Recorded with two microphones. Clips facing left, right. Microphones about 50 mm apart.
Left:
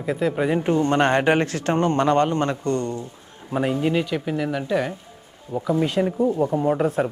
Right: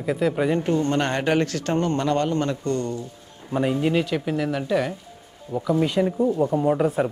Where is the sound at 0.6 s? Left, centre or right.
Left.